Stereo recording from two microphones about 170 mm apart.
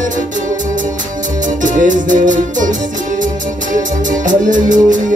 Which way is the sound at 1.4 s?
50° right (ahead or behind).